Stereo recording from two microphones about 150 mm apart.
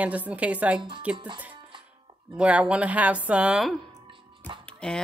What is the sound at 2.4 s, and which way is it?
Speech, 10° right (ahead or behind).